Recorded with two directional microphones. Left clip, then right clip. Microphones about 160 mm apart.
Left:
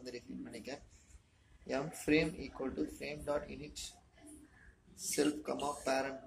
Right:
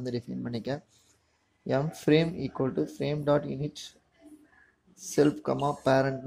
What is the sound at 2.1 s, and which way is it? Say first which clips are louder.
Speech: right 8 dB; 35° right (ahead or behind).